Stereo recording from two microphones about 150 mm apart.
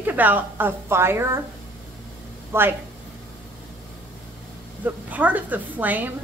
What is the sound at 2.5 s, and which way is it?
Speech, 15° right (ahead or behind).